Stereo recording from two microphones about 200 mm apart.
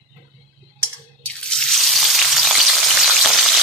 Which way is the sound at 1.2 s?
5° left (ahead or behind).